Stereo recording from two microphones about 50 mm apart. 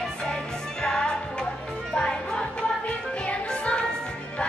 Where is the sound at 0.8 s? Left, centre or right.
Centre.